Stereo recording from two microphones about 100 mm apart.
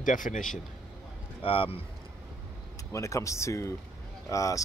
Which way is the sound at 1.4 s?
65° left (ahead or behind).